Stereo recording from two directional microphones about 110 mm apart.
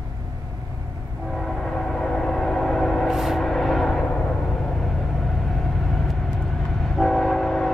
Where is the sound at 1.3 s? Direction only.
5° left (ahead or behind).